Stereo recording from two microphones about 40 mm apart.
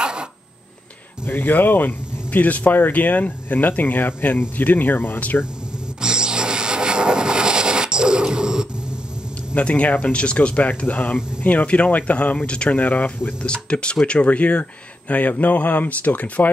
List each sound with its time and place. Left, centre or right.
0.0 s a sound: right
1.4 s speech: left
5.9 s a sound: centre
9.6 s speech: left
10.1 s speech: left
12.4 s speech: left
12.7 s speech: left
13.4 s speech: left
14.2 s speech: left